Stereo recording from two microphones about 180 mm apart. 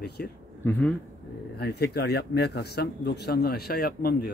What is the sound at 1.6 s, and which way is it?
Speech, 65° left (ahead or behind).